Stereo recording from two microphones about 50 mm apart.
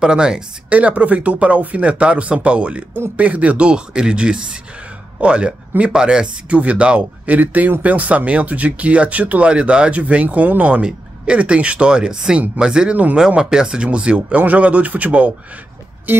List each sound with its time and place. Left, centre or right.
0.0 s speech: centre
0.7 s speech: right
9.5 s speech: right
10.8 s speech: right
12.9 s speech: right
13.3 s a man's voice: centre
16.1 s music: right